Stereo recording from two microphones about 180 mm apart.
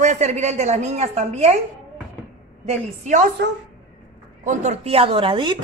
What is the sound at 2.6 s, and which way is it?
Speech, 40° right (ahead or behind).